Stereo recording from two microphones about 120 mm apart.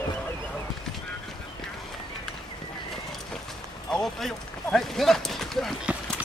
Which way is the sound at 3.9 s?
5° left (ahead or behind).